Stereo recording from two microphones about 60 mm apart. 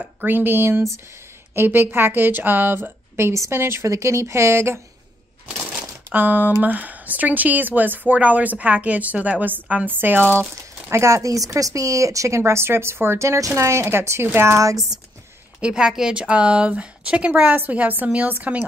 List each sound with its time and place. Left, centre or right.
0.0 s speech: right
5.5 s speech: right
10.9 s speech: right
15.6 s speech: centre